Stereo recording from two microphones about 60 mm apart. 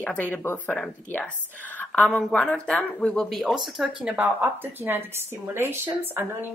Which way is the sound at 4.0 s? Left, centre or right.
Centre.